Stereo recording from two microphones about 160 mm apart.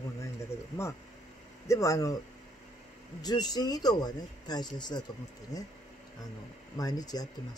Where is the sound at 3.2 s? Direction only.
25° left (ahead or behind).